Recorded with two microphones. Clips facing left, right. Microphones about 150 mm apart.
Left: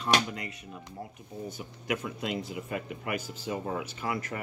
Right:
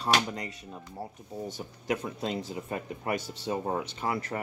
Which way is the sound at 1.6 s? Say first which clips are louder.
Right 1 dB; 35° right (ahead or behind).